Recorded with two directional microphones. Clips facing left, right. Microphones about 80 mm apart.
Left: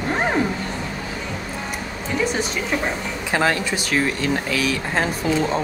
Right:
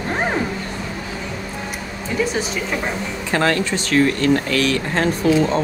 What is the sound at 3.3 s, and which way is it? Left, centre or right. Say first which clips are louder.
Speech: right 2 dB; centre.